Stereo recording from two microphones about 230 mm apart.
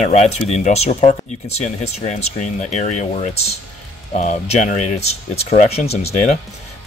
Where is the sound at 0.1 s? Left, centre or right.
Left.